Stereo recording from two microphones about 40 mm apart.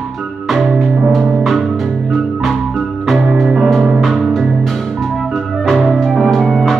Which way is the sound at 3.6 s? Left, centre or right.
Centre.